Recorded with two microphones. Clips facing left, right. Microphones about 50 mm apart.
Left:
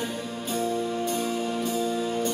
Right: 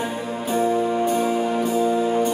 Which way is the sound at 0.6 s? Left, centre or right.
Right.